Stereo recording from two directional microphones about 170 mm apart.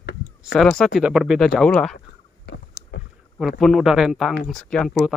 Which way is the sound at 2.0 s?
90° left.